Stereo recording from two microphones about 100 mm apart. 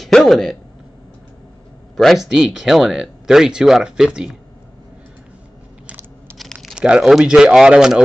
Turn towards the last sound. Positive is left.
turn(degrees=-5)  # may be behind; listen again after turning